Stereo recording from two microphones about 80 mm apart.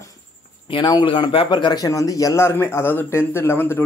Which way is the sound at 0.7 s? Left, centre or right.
Left.